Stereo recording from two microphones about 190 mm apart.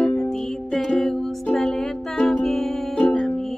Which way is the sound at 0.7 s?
Centre (ahead or behind).